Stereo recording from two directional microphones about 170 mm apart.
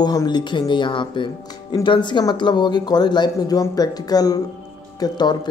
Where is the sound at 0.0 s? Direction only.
25° left (ahead or behind).